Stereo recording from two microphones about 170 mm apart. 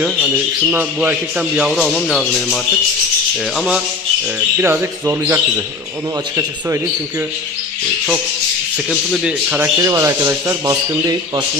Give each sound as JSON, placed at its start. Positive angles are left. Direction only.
{"t": 0.0, "sound": "speech", "side_deg": -5}
{"t": 9.1, "sound": "speech", "side_deg": -5}
{"t": 9.8, "sound": "speech", "side_deg": -15}